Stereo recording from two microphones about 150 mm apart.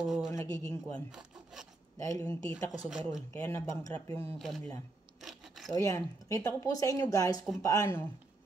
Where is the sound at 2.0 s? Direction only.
20° left (ahead or behind).